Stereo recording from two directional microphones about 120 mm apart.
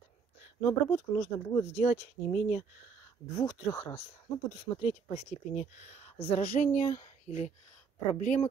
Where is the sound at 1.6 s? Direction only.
60° left (ahead or behind).